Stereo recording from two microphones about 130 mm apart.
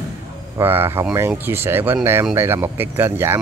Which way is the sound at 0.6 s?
15° right (ahead or behind).